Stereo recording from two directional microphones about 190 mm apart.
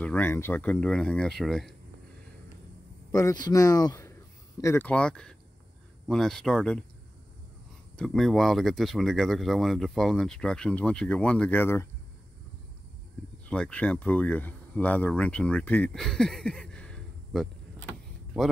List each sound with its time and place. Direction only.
0.0 s speech: 10° left (ahead or behind)
3.1 s speech: 15° left (ahead or behind)
7.9 s speech: 5° left (ahead or behind)
13.5 s speech: 5° left (ahead or behind)